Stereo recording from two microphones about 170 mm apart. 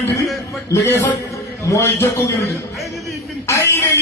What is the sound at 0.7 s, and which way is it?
A man's voice, 15° left (ahead or behind).